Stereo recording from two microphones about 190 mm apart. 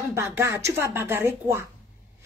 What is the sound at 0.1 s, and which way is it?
A woman's voice, 15° right (ahead or behind).